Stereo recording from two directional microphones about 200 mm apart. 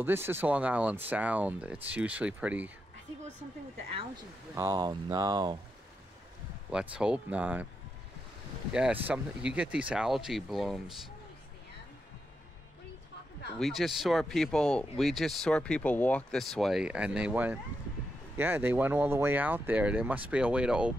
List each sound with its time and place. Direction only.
0.0 s speech: 10° right (ahead or behind)
4.6 s speech: 15° right (ahead or behind)
6.7 s speech: 5° right (ahead or behind)
8.7 s speech: 5° right (ahead or behind)
13.6 s speech: centre (ahead or behind)